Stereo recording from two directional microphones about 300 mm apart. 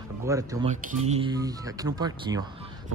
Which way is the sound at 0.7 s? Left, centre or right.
Right.